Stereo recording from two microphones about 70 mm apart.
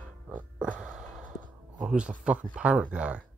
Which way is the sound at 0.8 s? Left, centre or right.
Centre.